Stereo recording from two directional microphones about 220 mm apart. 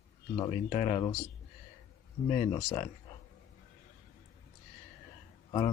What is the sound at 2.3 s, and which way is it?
Speech, 30° left (ahead or behind).